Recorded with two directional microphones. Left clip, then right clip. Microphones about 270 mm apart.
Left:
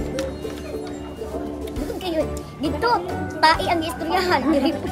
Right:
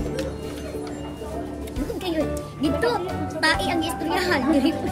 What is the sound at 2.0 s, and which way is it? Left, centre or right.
A child's voice, centre.